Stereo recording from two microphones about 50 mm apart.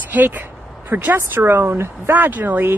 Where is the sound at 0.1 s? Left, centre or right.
Right.